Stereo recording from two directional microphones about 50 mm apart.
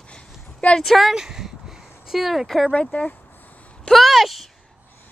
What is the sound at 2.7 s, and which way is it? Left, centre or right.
Speech, centre.